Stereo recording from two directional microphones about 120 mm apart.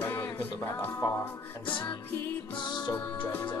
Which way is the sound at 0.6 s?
20° left (ahead or behind).